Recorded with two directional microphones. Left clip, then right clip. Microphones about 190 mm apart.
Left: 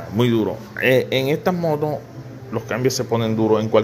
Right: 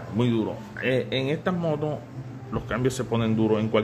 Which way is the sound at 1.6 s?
5° left (ahead or behind).